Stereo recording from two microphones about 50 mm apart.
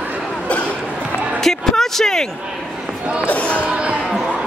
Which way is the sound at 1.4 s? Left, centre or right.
Centre.